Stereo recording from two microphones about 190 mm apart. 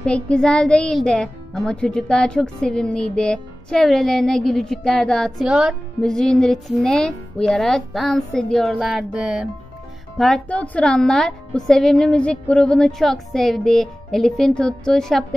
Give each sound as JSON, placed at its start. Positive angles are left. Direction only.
{"t": 0.0, "sound": "a child's voice", "side_deg": 5}